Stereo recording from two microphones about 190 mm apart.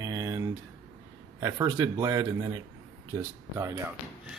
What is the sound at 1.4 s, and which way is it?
Speech, 20° right (ahead or behind).